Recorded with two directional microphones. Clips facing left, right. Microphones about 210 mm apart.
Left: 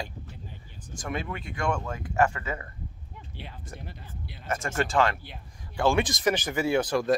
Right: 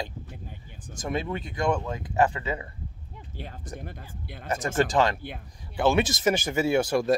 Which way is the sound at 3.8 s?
50° right (ahead or behind).